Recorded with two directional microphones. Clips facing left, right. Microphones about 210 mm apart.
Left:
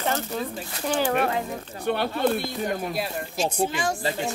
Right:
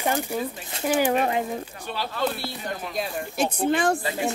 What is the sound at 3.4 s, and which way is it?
Speech, 60° right (ahead or behind).